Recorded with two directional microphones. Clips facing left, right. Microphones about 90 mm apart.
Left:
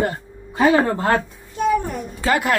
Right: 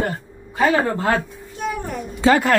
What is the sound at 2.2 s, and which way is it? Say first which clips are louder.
Speech: right 4 dB; 30° right (ahead or behind).